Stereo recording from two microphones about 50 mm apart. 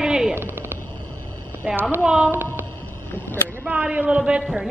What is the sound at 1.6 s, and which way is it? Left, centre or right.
Speech, centre.